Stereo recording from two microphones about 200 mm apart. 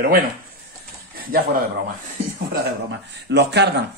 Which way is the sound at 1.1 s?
45° right (ahead or behind).